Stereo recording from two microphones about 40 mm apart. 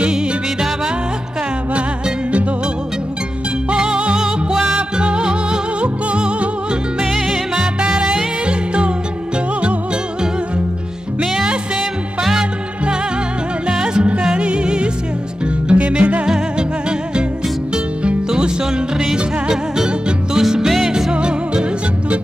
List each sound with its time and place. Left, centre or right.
0.1 s music: centre
3.7 s music: right
7.8 s music: right
11.1 s music: centre
13.7 s music: right
18.3 s music: centre
20.3 s music: centre
21.1 s music: right